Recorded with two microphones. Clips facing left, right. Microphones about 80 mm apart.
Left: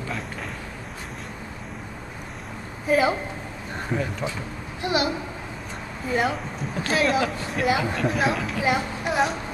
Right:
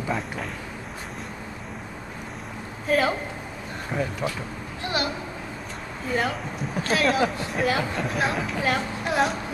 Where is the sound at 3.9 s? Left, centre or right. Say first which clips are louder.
Even; centre.